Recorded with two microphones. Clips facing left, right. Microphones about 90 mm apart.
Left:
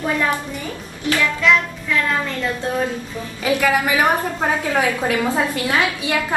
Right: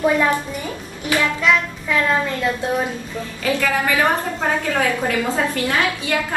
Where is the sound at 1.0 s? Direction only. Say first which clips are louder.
Left 1 dB; 20° right (ahead or behind).